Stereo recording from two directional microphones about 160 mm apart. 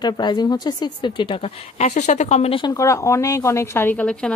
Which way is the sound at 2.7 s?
20° left (ahead or behind).